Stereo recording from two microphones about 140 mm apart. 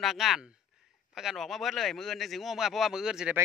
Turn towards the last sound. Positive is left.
turn(degrees=-5)  # may be behind; listen again after turning